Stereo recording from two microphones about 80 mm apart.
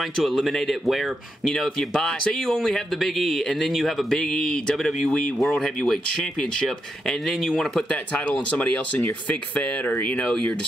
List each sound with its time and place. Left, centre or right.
0.0 s speech: centre
7.9 s speech: centre